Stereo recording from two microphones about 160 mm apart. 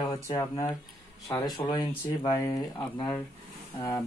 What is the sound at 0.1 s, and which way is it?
Speech, 25° left (ahead or behind).